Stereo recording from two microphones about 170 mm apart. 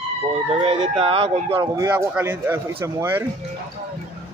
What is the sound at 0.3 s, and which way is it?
Speech, 35° right (ahead or behind).